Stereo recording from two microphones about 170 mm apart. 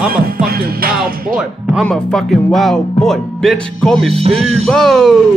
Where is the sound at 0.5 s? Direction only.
60° right (ahead or behind).